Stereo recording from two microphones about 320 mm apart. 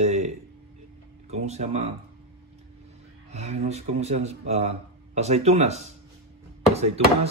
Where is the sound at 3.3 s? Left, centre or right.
Centre.